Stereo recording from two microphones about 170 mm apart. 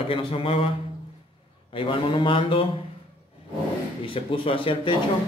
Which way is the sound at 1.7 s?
30° left (ahead or behind).